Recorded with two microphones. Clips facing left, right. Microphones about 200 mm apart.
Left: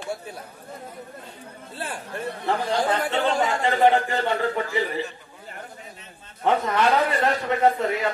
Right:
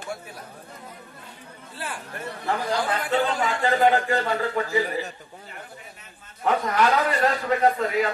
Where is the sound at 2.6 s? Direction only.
25° left (ahead or behind).